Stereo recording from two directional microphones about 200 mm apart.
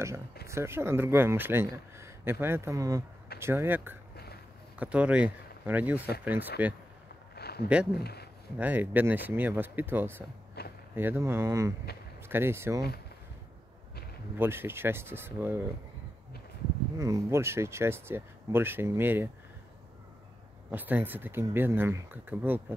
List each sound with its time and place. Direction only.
0.5 s speech: 10° right (ahead or behind)
7.3 s a sound: 55° left (ahead or behind)
7.6 s speech: 5° right (ahead or behind)
8.0 s speech: 55° left (ahead or behind)
8.5 s speech: 10° right (ahead or behind)
10.6 s a sound: 55° left (ahead or behind)
11.0 s speech: 10° right (ahead or behind)
14.3 s speech: 10° right (ahead or behind)
17.0 s speech: 15° right (ahead or behind)
20.7 s speech: 10° right (ahead or behind)